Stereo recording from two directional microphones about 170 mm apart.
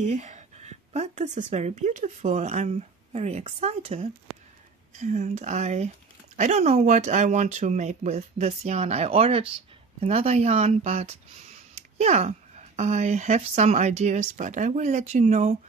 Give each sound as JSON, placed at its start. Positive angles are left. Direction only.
{"t": 0.0, "sound": "speech", "side_deg": -45}